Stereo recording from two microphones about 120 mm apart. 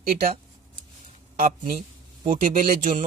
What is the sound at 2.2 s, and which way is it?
Speech, 90° right.